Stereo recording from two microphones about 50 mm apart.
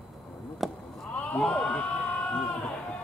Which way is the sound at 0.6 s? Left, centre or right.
Centre.